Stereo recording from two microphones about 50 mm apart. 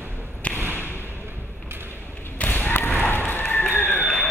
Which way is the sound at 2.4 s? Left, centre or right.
Left.